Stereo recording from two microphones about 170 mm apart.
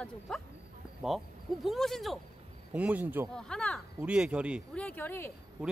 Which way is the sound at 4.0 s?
5° right (ahead or behind).